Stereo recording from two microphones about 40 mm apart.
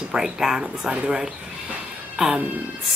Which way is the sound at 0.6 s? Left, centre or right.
Right.